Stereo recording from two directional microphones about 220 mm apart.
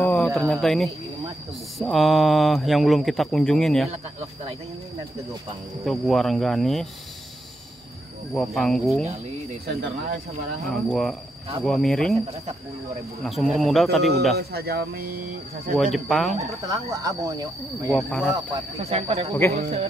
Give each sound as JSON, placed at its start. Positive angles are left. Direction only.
{"t": 0.0, "sound": "a sound", "side_deg": 5}
{"t": 0.5, "sound": "speech", "side_deg": 0}
{"t": 3.9, "sound": "speech", "side_deg": -30}
{"t": 5.9, "sound": "speech", "side_deg": 0}
{"t": 8.3, "sound": "speech", "side_deg": 0}
{"t": 9.7, "sound": "speech", "side_deg": -45}
{"t": 10.7, "sound": "speech", "side_deg": 0}
{"t": 13.2, "sound": "speech", "side_deg": 0}
{"t": 14.5, "sound": "speech", "side_deg": -45}
{"t": 15.8, "sound": "speech", "side_deg": 0}
{"t": 16.9, "sound": "speech", "side_deg": -15}
{"t": 17.8, "sound": "speech", "side_deg": 0}
{"t": 18.9, "sound": "speech", "side_deg": -25}